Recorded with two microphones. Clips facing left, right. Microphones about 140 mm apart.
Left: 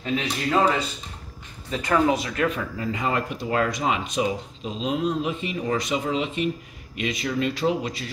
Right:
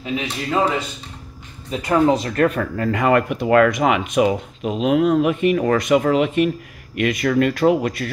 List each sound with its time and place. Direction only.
0.0 s a man's voice: 5° right (ahead or behind)
1.7 s speech: 25° right (ahead or behind)
2.2 s speech: 50° right (ahead or behind)